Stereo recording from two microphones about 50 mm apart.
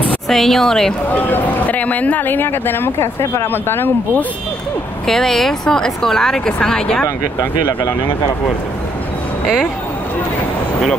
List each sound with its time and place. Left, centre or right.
0.3 s speech: centre
1.1 s speech: left
5.0 s speech: centre